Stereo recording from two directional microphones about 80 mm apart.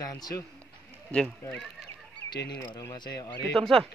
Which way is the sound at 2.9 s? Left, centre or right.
Left.